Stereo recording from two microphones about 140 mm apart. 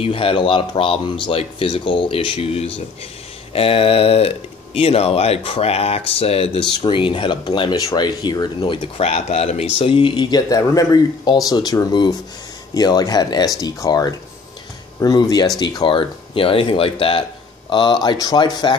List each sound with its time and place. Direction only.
0.0 s speech: 40° left (ahead or behind)
9.0 s speech: 50° left (ahead or behind); by 18.8 s 30° left (ahead or behind)